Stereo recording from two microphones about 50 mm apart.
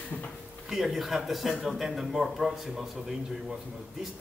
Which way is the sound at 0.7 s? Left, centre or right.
Centre.